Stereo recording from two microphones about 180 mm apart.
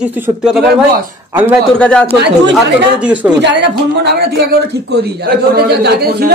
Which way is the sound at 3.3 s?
75° right (ahead or behind).